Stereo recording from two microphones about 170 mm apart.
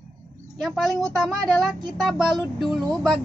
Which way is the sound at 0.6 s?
Centre (ahead or behind).